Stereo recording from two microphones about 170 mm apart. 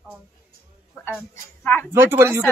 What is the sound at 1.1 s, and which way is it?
Speech, 10° left (ahead or behind).